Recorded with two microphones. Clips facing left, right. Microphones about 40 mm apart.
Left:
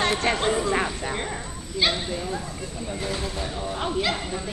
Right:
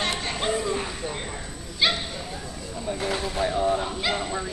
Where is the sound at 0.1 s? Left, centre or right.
Left.